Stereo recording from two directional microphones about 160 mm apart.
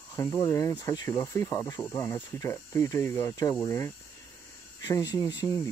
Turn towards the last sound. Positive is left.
turn(degrees=25)  # may be behind; listen again after turning